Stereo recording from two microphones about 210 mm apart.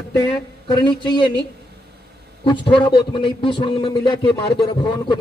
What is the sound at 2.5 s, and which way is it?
A man's voice, 20° left (ahead or behind).